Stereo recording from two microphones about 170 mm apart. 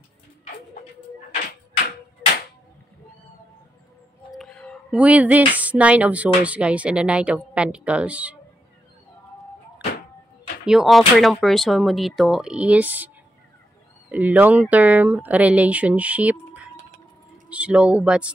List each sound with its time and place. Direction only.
4.3 s a sound: 5° left (ahead or behind)
4.9 s speech: 10° right (ahead or behind)
10.6 s speech: 5° right (ahead or behind)
14.1 s speech: 10° right (ahead or behind)